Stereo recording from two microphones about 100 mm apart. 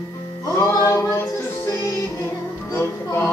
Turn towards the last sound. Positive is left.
turn(degrees=25)  # may be behind; listen again after turning